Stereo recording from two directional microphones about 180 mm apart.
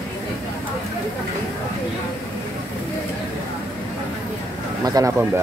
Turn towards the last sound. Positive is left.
turn(degrees=-20)  # may be behind; listen again after turning